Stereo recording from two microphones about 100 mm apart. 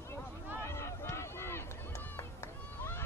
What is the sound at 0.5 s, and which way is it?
Run, 25° left (ahead or behind).